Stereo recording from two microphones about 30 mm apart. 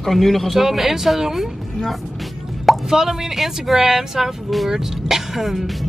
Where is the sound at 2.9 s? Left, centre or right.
Centre.